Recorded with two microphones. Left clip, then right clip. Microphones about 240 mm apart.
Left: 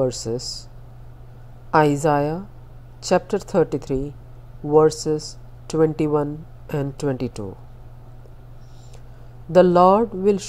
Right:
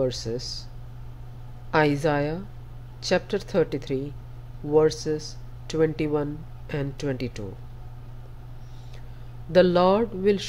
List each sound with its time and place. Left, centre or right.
0.0 s a woman's voice: centre
1.7 s a woman's voice: centre
9.5 s a woman's voice: centre